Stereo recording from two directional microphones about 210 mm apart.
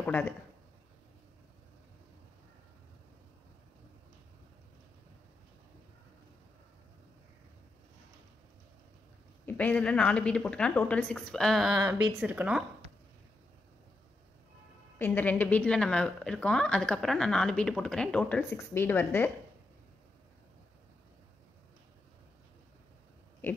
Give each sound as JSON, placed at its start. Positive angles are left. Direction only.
{"t": 0.0, "sound": "speech", "side_deg": 10}
{"t": 9.5, "sound": "a woman's voice", "side_deg": 10}
{"t": 11.8, "sound": "speech", "side_deg": -15}
{"t": 12.2, "sound": "a woman's voice", "side_deg": -5}
{"t": 15.0, "sound": "a woman's voice", "side_deg": 10}